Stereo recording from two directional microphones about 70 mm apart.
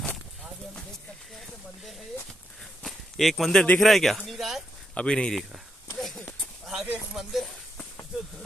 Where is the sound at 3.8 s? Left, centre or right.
Centre.